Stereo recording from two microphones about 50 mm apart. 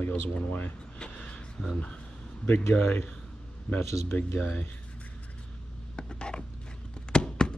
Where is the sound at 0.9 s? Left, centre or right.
Centre.